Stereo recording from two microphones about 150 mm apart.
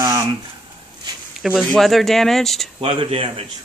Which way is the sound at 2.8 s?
35° right (ahead or behind).